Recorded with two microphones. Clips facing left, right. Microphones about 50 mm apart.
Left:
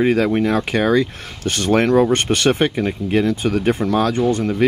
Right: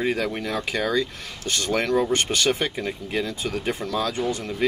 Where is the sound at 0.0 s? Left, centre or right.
Left.